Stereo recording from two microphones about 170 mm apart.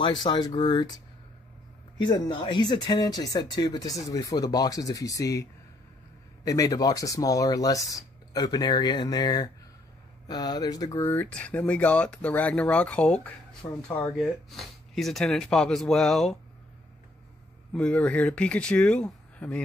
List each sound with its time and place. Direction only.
0.0 s speech: 25° left (ahead or behind); by 16.3 s 5° left (ahead or behind)
17.7 s speech: 5° left (ahead or behind)